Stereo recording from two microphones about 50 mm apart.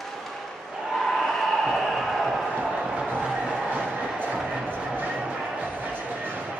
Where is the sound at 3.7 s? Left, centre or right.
Right.